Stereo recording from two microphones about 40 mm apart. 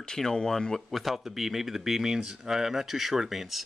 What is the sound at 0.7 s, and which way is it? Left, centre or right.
Speech, centre.